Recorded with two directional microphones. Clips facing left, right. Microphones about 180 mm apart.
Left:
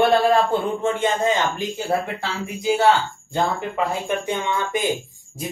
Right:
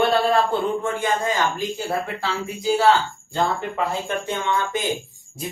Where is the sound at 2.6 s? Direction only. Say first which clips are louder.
Even; 20° left (ahead or behind).